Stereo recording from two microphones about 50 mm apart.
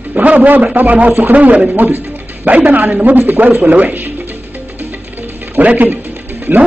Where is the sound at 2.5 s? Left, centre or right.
Right.